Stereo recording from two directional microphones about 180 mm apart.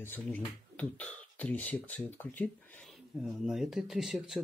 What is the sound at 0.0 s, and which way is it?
Speech, 10° left (ahead or behind).